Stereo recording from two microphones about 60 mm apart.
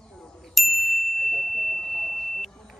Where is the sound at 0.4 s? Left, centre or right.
Centre.